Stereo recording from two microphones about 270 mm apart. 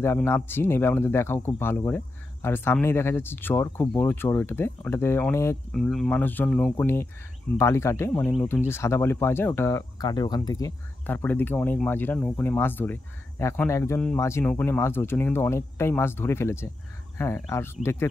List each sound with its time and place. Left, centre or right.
0.0 s speech: centre